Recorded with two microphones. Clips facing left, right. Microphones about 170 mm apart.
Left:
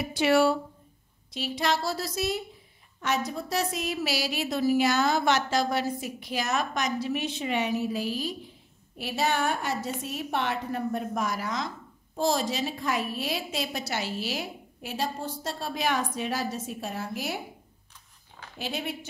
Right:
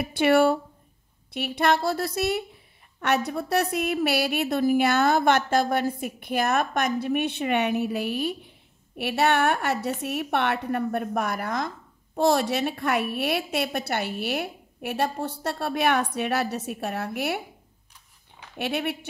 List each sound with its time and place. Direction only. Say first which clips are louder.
0.0 s a woman's voice: right 3 dB; 55° right (ahead or behind)
18.6 s a woman's voice: right 6 dB; 65° right (ahead or behind)